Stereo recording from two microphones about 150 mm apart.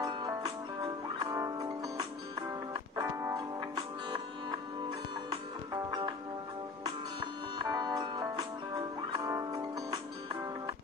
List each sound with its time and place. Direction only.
0.0 s music: 25° right (ahead or behind)
3.7 s music: 30° right (ahead or behind)
5.9 s music: 25° right (ahead or behind)